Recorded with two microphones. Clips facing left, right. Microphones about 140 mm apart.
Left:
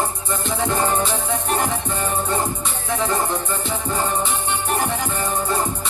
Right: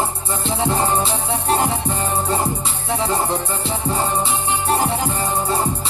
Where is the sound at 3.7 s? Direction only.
35° right (ahead or behind).